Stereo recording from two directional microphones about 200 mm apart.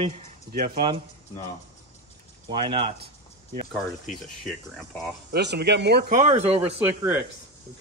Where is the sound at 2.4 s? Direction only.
25° right (ahead or behind).